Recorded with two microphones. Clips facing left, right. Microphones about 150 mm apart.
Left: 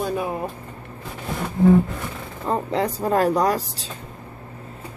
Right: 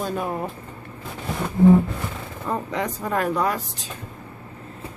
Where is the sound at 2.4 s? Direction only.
30° left (ahead or behind).